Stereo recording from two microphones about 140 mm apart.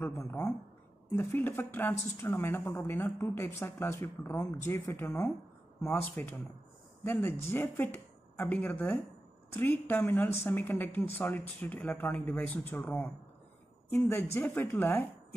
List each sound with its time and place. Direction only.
0.0 s a woman's voice: 15° left (ahead or behind)